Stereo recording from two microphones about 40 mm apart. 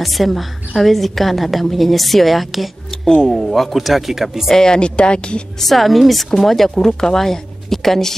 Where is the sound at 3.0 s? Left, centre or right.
Centre.